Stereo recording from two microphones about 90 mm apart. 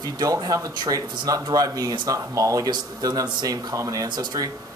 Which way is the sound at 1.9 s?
50° right (ahead or behind).